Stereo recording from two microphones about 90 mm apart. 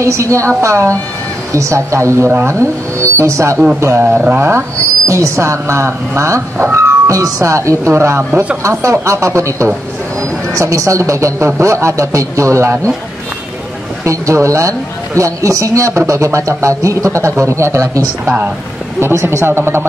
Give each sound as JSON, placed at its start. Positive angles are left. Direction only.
{"t": 0.0, "sound": "speech", "side_deg": -35}
{"t": 8.3, "sound": "speech", "side_deg": -15}
{"t": 8.6, "sound": "speech", "side_deg": -35}
{"t": 14.0, "sound": "speech", "side_deg": -35}